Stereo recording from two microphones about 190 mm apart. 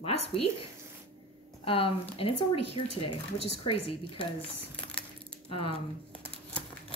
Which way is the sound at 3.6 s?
30° left (ahead or behind).